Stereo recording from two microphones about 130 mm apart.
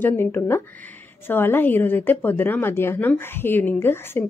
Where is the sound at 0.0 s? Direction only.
15° left (ahead or behind).